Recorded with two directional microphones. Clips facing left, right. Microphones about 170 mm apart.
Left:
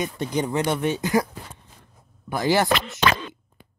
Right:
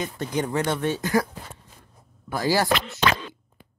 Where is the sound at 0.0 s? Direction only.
20° left (ahead or behind).